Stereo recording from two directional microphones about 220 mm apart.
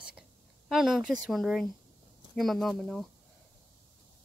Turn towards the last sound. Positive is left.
turn(degrees=0)  # may be behind; listen again after turning